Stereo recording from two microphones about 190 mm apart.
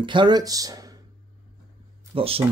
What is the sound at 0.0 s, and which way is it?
Speech, 25° right (ahead or behind).